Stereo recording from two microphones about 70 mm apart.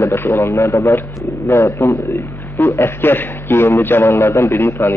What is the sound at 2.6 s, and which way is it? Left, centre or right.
A man's voice, left.